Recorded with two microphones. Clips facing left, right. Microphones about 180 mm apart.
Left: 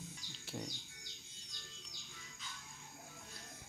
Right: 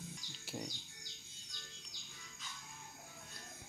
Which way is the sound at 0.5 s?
5° right (ahead or behind).